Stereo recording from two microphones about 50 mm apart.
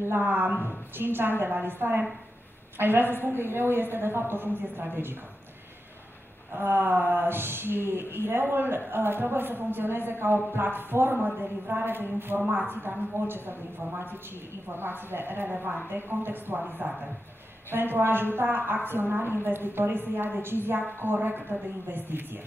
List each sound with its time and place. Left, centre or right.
0.2 s speech: right
6.5 s speech: right